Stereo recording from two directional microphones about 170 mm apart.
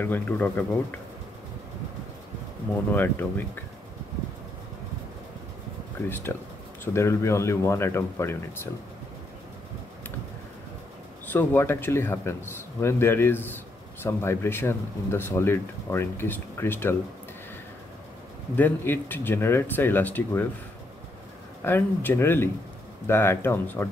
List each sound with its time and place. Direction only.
0.0 s speech: 10° left (ahead or behind)
2.9 s speech: 10° left (ahead or behind)
6.0 s speech: 15° left (ahead or behind)
11.2 s speech: 10° left (ahead or behind)
18.6 s speech: 10° left (ahead or behind)
21.6 s speech: 15° left (ahead or behind)